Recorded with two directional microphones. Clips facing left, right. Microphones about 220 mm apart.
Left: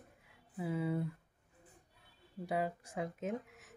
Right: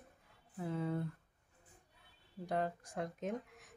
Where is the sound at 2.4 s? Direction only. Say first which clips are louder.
Left 1 dB; 5° left (ahead or behind).